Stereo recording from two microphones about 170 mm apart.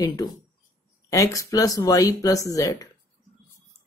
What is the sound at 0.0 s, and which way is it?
Speech, 20° left (ahead or behind).